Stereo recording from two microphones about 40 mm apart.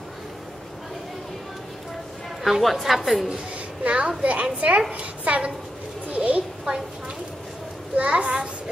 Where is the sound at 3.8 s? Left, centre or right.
Right.